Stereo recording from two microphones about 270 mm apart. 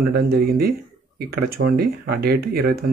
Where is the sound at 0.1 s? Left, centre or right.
Right.